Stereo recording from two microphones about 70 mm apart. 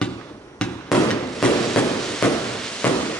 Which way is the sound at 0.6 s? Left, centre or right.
Centre.